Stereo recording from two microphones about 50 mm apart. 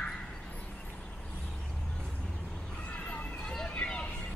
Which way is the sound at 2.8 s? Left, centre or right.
Left.